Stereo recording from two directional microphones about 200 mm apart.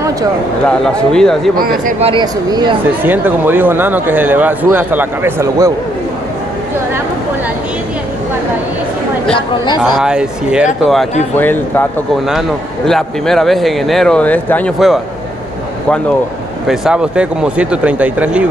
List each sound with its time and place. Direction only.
0.7 s a man's voice: 5° left (ahead or behind)
1.6 s speech: 45° right (ahead or behind)
2.0 s speech: 25° right (ahead or behind)
3.0 s speech: 10° right (ahead or behind)
9.8 s a man's voice: 5° right (ahead or behind)
11.3 s a man's voice: 10° left (ahead or behind)
16.6 s a man's voice: 5° right (ahead or behind)